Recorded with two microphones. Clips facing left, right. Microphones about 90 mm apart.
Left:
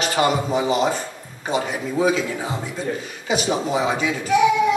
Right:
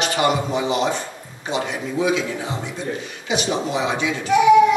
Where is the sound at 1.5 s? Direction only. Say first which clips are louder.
Left 1 dB; 40° left (ahead or behind).